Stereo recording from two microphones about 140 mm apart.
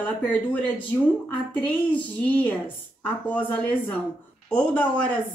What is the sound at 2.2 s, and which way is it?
Speech, 10° left (ahead or behind).